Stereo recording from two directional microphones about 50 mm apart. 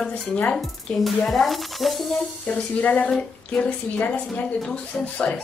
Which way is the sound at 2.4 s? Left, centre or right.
Left.